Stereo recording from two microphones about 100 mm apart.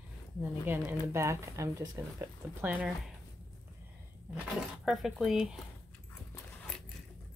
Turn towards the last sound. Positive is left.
turn(degrees=-5)  # may be behind; listen again after turning